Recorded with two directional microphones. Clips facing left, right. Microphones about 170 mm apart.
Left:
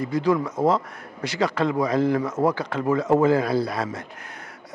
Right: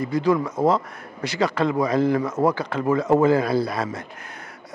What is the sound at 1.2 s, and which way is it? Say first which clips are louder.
A man's voice: right 1 dB; 10° right (ahead or behind).